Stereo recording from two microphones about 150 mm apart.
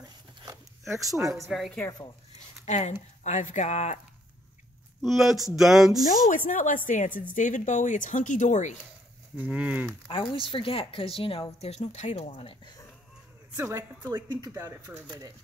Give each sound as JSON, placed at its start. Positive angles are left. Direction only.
{"t": 1.3, "sound": "speech", "side_deg": 0}
{"t": 2.6, "sound": "speech", "side_deg": 50}
{"t": 5.0, "sound": "speech", "side_deg": 0}
{"t": 6.0, "sound": "speech", "side_deg": 65}
{"t": 9.4, "sound": "speech", "side_deg": -10}
{"t": 10.0, "sound": "a woman's voice", "side_deg": 35}
{"t": 13.6, "sound": "speech", "side_deg": -20}